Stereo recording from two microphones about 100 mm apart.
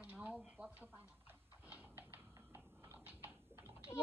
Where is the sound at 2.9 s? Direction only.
20° right (ahead or behind).